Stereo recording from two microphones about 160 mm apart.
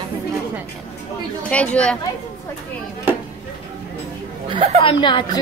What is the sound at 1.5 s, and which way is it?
Speech, 10° left (ahead or behind).